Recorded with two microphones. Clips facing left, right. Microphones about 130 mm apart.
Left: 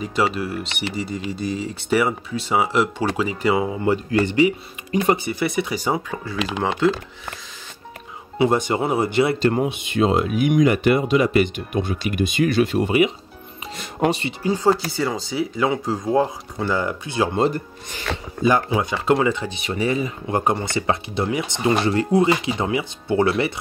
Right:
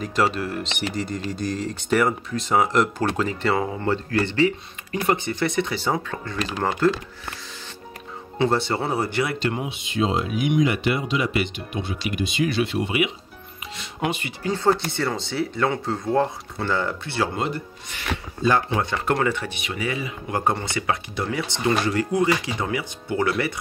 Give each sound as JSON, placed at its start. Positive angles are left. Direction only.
{"t": 0.0, "sound": "speech", "side_deg": 5}
{"t": 8.4, "sound": "speech", "side_deg": 15}
{"t": 9.4, "sound": "speech", "side_deg": 40}
{"t": 9.7, "sound": "speech", "side_deg": 55}
{"t": 14.5, "sound": "speech", "side_deg": 10}
{"t": 17.4, "sound": "speech", "side_deg": 40}
{"t": 18.4, "sound": "speech", "side_deg": 10}
{"t": 19.5, "sound": "speech", "side_deg": 35}
{"t": 20.3, "sound": "speech", "side_deg": 25}